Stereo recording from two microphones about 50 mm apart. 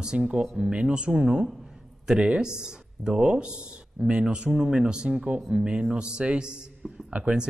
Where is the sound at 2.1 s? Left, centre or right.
Centre.